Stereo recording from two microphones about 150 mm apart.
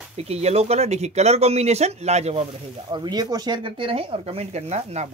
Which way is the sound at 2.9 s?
25° right (ahead or behind).